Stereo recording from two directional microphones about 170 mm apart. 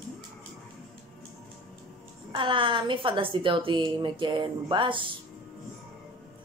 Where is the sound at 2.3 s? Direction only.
30° right (ahead or behind).